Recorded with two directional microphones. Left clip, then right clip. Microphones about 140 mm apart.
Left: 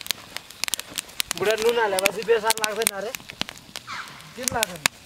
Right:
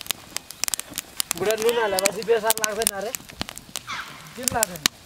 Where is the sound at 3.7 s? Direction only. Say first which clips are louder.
Right 2 dB; 20° right (ahead or behind).